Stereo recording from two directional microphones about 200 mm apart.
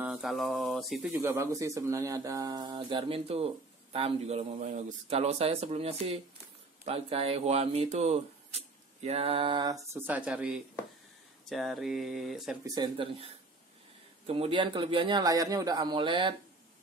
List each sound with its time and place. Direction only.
0.0 s speech: 5° right (ahead or behind)
1.1 s speech: 15° right (ahead or behind)
12.6 s speech: 20° right (ahead or behind)